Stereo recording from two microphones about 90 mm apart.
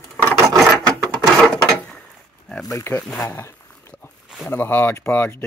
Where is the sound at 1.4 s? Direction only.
10° left (ahead or behind).